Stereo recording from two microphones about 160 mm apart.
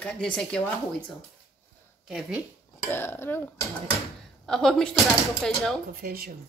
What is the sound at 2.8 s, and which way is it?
Speech, 15° left (ahead or behind).